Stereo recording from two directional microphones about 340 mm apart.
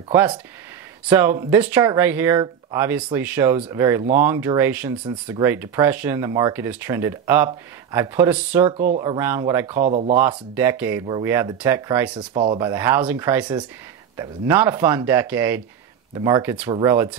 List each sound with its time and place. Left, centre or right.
0.1 s speech: centre
8.6 s speech: right
9.8 s speech: centre
10.1 s speech: centre